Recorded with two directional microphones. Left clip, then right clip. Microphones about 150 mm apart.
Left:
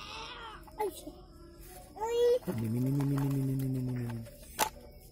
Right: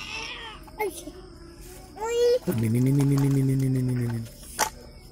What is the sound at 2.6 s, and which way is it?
Speech, 15° right (ahead or behind).